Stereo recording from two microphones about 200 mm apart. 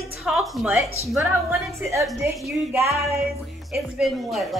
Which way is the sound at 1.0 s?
Centre (ahead or behind).